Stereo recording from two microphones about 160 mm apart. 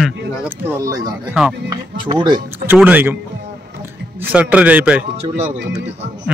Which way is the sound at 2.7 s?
10° right (ahead or behind).